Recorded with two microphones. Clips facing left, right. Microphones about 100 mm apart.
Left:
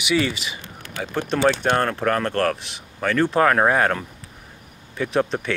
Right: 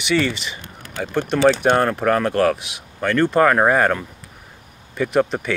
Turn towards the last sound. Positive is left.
turn(degrees=0)  # may be behind; listen again after turning